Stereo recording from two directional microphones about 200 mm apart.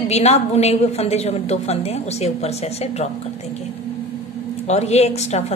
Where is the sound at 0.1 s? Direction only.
35° left (ahead or behind).